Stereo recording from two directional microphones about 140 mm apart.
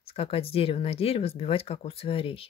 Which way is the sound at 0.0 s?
45° left (ahead or behind).